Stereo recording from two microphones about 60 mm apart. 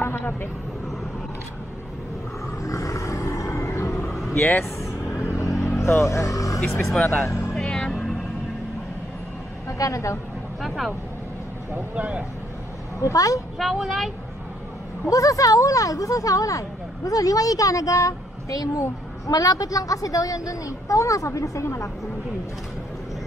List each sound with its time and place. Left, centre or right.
0.0 s vehicle: left
2.6 s roar: left
4.3 s speech: left
5.6 s vehicle: left
6.8 s a woman's voice: centre
7.2 s music: left
7.5 s music: centre
7.9 s music: centre
9.7 s speech: left
10.6 s vehicle: centre
11.7 s speech: right
13.0 s speech: left
13.7 s a woman's voice: centre
15.0 s speech: left